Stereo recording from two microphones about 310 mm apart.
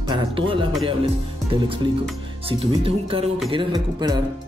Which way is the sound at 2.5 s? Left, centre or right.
Centre.